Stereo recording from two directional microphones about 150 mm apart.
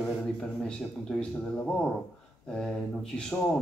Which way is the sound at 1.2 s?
10° left (ahead or behind).